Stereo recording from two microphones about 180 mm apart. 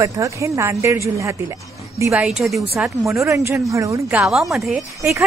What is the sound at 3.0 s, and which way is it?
A woman's voice, 15° right (ahead or behind).